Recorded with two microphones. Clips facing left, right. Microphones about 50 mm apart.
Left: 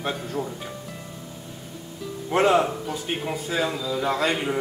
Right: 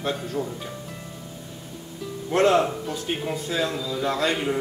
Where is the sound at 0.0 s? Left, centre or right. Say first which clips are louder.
Right 1 dB; centre.